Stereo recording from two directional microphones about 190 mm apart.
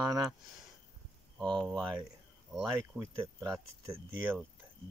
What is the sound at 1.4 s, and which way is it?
Speech, centre (ahead or behind).